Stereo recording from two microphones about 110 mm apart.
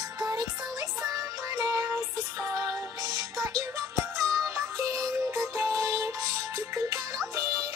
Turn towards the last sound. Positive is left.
turn(degrees=-30)  # may be behind; listen again after turning